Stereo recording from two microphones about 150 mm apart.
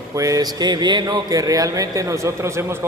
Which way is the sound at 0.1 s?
20° right (ahead or behind).